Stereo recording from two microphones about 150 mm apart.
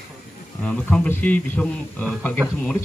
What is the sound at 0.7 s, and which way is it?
Speech, 5° left (ahead or behind).